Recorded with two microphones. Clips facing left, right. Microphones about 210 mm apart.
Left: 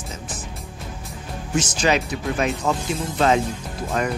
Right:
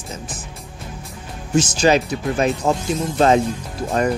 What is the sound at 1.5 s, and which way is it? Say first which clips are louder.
Speech: right 5 dB; 35° right (ahead or behind).